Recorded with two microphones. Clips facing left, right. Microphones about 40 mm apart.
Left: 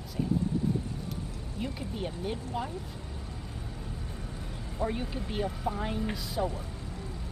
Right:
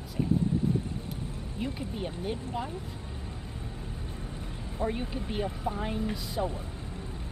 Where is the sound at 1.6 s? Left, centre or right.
Centre.